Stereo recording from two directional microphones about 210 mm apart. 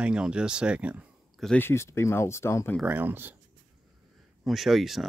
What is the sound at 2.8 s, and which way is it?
Speech, 10° right (ahead or behind).